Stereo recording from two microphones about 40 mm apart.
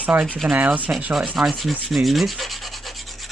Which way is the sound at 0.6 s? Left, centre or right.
Right.